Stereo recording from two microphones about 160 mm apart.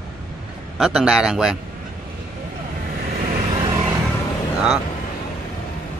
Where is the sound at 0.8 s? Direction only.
5° right (ahead or behind).